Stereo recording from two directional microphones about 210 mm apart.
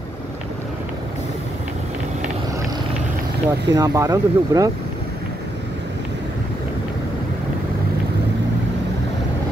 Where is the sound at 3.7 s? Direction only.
15° right (ahead or behind).